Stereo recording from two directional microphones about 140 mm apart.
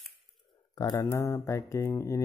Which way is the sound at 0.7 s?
25° left (ahead or behind).